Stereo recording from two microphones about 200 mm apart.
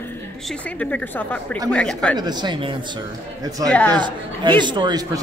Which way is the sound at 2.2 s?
20° right (ahead or behind).